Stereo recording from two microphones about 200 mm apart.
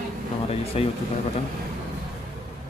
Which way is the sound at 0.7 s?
30° left (ahead or behind).